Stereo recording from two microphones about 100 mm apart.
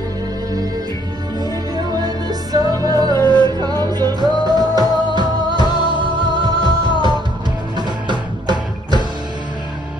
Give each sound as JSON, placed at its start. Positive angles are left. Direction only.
{"t": 2.0, "sound": "music", "side_deg": -40}
{"t": 3.2, "sound": "music", "side_deg": 45}
{"t": 3.5, "sound": "music", "side_deg": -40}
{"t": 5.6, "sound": "music", "side_deg": 45}
{"t": 5.9, "sound": "music", "side_deg": -55}